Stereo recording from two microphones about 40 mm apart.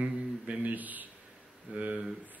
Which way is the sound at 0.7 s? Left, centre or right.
Right.